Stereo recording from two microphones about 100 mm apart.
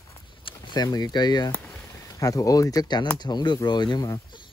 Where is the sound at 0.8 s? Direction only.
40° left (ahead or behind).